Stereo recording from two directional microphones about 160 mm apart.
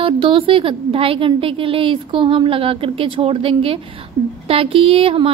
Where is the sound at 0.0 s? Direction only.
35° right (ahead or behind).